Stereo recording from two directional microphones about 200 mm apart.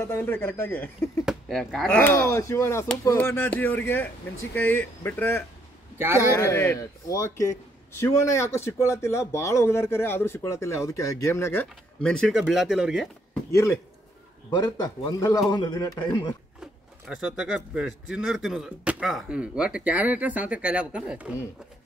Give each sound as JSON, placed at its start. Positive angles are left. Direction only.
{"t": 0.0, "sound": "speech", "side_deg": 10}
{"t": 2.0, "sound": "speech", "side_deg": 10}
{"t": 5.9, "sound": "speech", "side_deg": -10}
{"t": 6.3, "sound": "speech", "side_deg": 15}
{"t": 13.5, "sound": "a man's voice", "side_deg": 15}
{"t": 17.1, "sound": "speech", "side_deg": -5}